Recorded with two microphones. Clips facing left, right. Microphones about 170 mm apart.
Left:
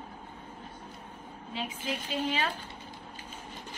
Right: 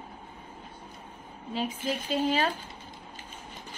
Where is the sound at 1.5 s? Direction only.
40° right (ahead or behind).